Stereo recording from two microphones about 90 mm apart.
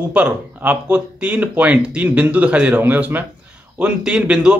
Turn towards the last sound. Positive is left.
turn(degrees=-10)  # may be behind; listen again after turning